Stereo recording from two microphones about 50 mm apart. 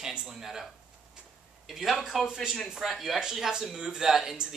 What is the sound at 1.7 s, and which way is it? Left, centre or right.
Speech, centre.